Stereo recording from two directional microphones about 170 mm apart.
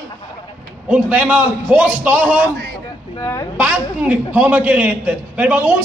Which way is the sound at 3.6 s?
10° right (ahead or behind).